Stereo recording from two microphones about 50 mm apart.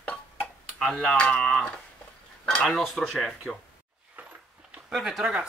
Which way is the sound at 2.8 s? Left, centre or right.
Centre.